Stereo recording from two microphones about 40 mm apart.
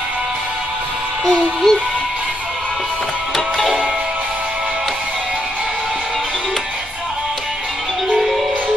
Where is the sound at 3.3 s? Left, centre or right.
Centre.